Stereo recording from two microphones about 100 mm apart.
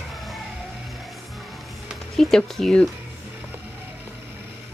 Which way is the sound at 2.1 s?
Centre (ahead or behind).